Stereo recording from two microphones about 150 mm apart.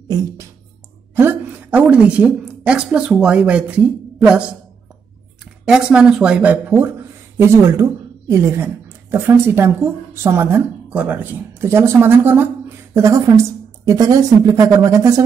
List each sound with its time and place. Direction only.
1.1 s a woman's voice: 10° right (ahead or behind)
5.7 s speech: 5° right (ahead or behind); by 15.2 s 25° right (ahead or behind)